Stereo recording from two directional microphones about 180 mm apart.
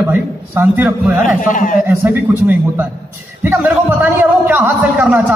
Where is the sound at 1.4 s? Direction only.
45° left (ahead or behind).